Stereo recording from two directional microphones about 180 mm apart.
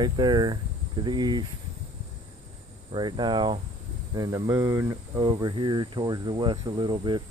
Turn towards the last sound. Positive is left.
turn(degrees=-25)  # may be behind; listen again after turning